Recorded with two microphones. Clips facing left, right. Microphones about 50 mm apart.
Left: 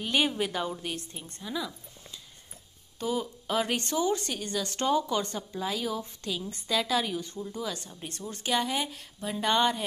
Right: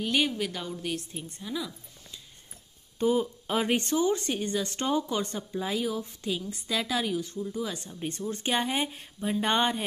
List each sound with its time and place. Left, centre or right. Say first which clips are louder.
0.0 s speech: even; centre
3.0 s a woman's voice: right 5 dB; right
8.3 s speech: even; right